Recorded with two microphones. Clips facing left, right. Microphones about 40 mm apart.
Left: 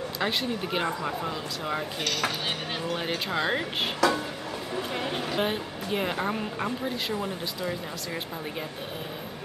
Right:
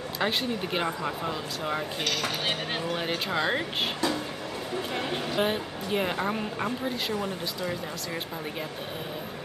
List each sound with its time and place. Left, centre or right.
0.2 s a woman's voice: centre
4.0 s music: left
4.9 s a woman's voice: centre